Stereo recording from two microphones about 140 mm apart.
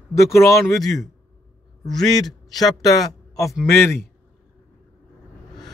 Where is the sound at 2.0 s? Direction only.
30° left (ahead or behind).